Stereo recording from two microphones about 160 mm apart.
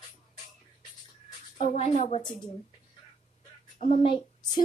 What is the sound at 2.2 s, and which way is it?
Speech, 30° left (ahead or behind).